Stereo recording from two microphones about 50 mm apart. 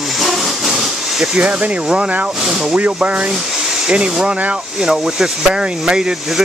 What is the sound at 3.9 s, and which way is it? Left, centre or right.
Speech, centre.